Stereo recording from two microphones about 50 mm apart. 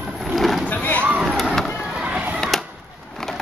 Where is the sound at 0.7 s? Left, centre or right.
Left.